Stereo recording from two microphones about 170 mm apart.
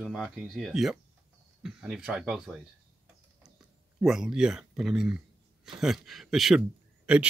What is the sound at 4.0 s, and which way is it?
Speech, 5° right (ahead or behind).